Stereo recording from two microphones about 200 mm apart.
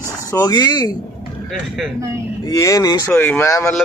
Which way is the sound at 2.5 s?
15° left (ahead or behind).